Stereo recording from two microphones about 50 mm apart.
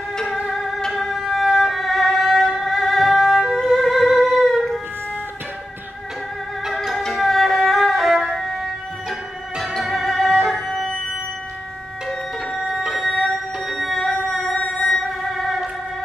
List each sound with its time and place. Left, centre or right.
0.7 s violin: centre
2.6 s music: centre
6.6 s music: centre
9.6 s music: centre
12.5 s music: centre